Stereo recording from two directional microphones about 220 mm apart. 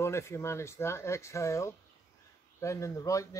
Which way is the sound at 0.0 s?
10° left (ahead or behind).